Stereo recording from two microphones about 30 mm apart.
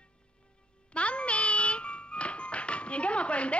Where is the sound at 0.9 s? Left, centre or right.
Left.